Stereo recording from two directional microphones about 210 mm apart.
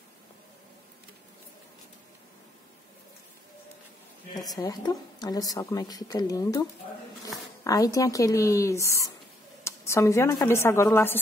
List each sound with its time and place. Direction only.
4.5 s a woman's voice: 20° left (ahead or behind)
7.6 s a woman's voice: 15° left (ahead or behind)